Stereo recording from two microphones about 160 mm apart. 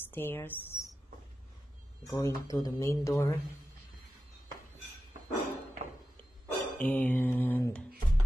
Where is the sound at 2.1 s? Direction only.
20° left (ahead or behind).